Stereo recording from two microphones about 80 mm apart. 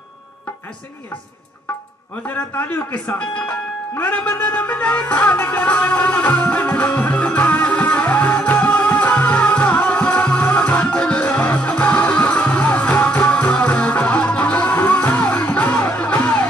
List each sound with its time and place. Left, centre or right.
2.2 s a man's voice: left
3.9 s music: centre